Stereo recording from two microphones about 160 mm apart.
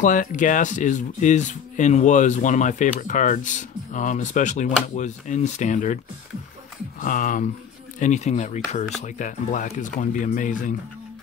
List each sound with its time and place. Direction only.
0.0 s speech: 55° left (ahead or behind)
7.0 s speech: 55° left (ahead or behind)
8.0 s speech: 45° left (ahead or behind)